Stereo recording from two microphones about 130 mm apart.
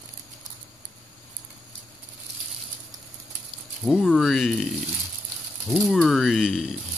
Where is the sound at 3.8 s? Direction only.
Centre (ahead or behind).